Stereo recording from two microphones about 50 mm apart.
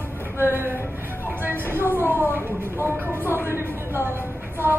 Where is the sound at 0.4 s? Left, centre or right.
Right.